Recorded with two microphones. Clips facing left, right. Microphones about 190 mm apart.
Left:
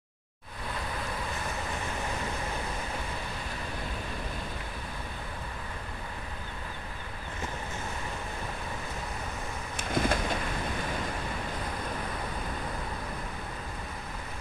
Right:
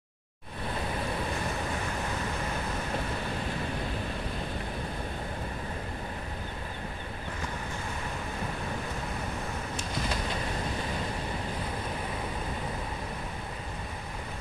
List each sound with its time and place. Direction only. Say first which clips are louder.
9.8 s train: left 8 dB; 55° left (ahead or behind)